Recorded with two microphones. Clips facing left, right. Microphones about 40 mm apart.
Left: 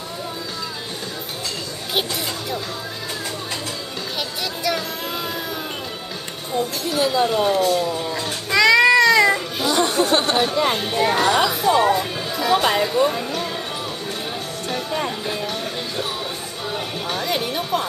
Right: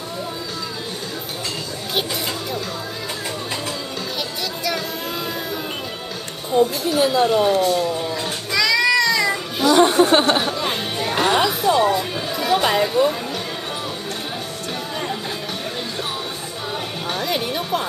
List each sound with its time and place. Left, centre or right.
4.6 s a sound: centre
6.5 s speech: centre
8.5 s music: left
9.8 s speech: right
10.5 s chatter: centre
11.1 s music: centre
11.6 s music: centre
14.7 s music: centre
16.7 s music: centre